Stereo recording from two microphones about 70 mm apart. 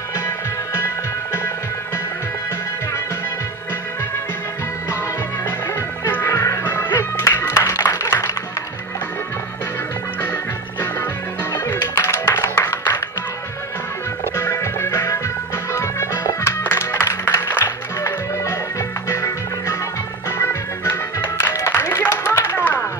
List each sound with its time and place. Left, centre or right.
0.7 s music: left
6.0 s music: left
11.8 s music: left
14.3 s music: left